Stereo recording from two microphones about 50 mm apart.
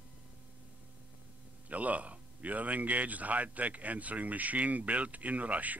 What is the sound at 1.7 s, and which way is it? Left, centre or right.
Speech, right.